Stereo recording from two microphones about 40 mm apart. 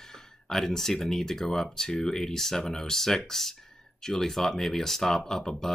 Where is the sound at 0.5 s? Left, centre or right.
Centre.